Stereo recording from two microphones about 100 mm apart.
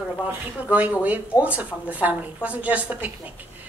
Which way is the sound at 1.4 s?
15° right (ahead or behind).